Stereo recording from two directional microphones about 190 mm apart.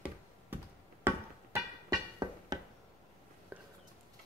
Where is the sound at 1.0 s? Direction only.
15° right (ahead or behind).